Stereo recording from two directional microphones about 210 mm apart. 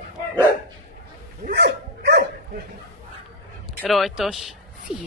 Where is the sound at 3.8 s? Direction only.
Centre (ahead or behind).